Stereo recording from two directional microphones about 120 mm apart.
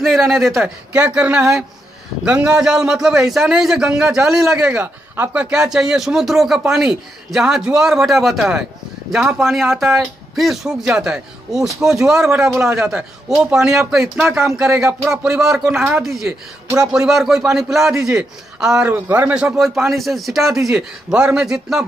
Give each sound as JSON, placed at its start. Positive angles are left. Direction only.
{"t": 0.0, "sound": "a man's voice", "side_deg": 0}
{"t": 0.9, "sound": "a man's voice", "side_deg": -10}
{"t": 4.7, "sound": "a man's voice", "side_deg": -20}
{"t": 12.4, "sound": "speech", "side_deg": -20}
{"t": 12.7, "sound": "a man's voice", "side_deg": -10}